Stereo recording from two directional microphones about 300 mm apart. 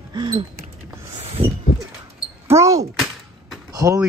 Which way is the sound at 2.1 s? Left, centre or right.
Centre.